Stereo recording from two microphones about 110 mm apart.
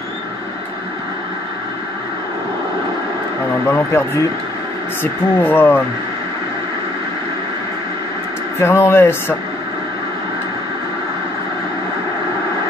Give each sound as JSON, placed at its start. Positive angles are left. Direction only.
{"t": 3.6, "sound": "speech", "side_deg": 20}
{"t": 8.5, "sound": "speech", "side_deg": 20}